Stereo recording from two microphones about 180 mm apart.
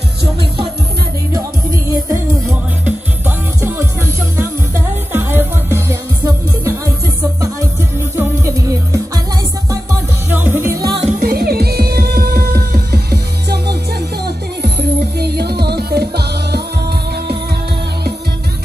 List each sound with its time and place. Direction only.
2.8 s music: 10° right (ahead or behind)
8.2 s music: 15° right (ahead or behind)
10.3 s music: 10° right (ahead or behind)
11.1 s music: 50° right (ahead or behind)